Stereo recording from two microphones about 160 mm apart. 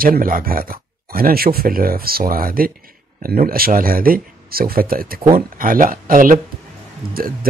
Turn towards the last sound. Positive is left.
turn(degrees=-65)  # may be behind; listen again after turning